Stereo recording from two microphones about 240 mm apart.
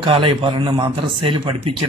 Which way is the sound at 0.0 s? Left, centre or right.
Right.